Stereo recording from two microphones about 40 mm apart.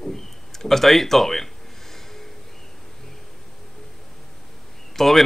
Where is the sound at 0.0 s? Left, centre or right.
Centre.